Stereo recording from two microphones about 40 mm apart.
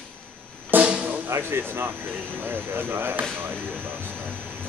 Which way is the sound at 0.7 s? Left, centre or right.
Right.